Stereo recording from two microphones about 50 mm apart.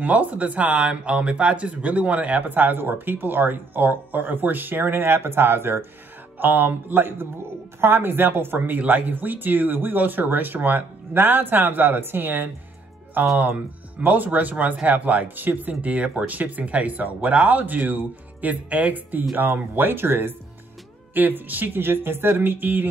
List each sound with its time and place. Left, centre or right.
0.0 s speech: right
6.3 s speech: right